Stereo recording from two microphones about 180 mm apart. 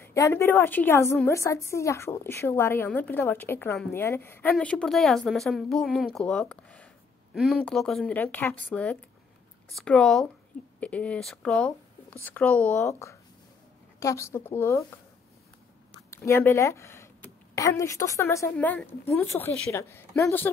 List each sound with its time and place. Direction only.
0.0 s a woman's voice: 15° left (ahead or behind)
16.1 s a woman's voice: 15° left (ahead or behind)